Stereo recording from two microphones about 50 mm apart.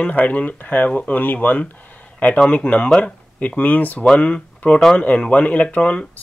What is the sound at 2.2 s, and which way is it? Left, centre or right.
Speech, left.